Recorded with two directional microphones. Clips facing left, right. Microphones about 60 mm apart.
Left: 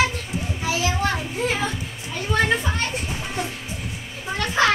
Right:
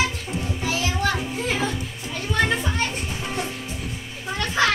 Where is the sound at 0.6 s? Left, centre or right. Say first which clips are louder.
Left 1 dB; centre.